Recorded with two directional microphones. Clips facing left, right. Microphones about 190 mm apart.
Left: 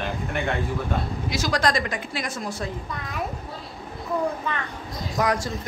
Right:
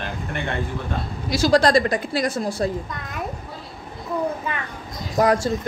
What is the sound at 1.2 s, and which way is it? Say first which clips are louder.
Speech: right 8 dB; 30° right (ahead or behind).